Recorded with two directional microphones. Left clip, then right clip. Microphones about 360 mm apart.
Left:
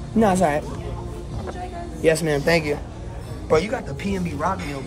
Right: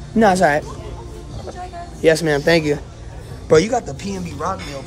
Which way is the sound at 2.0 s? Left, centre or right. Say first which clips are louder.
Right 4 dB; right.